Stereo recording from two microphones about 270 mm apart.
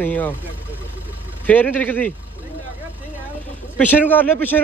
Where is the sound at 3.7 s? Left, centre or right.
Centre.